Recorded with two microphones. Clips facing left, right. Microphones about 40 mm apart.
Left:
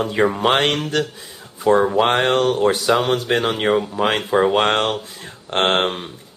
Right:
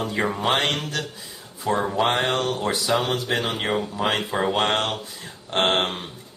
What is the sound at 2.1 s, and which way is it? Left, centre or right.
A man's voice, left.